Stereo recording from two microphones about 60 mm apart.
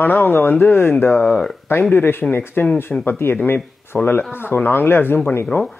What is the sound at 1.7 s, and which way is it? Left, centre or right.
Speech, left.